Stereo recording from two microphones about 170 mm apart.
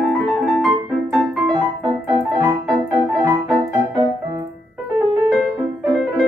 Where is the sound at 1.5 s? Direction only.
25° right (ahead or behind).